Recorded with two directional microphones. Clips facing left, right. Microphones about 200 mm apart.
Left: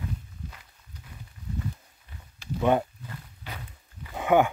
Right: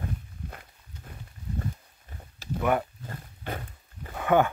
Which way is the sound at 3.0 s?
50° right (ahead or behind).